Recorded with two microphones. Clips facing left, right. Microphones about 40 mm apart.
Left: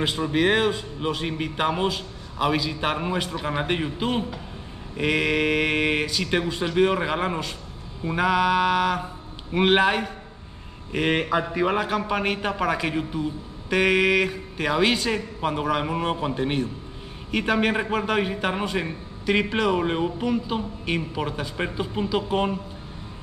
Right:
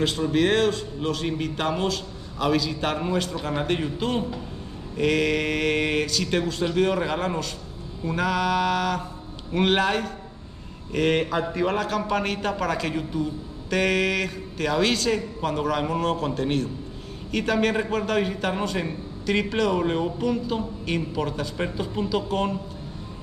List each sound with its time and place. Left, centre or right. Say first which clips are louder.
0.0 s a man's voice: even; centre